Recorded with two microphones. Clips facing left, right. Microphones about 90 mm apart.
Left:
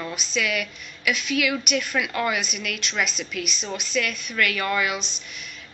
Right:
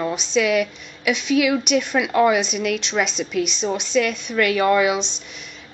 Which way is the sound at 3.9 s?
35° right (ahead or behind).